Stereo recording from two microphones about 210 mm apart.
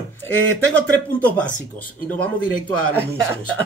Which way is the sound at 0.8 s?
10° left (ahead or behind).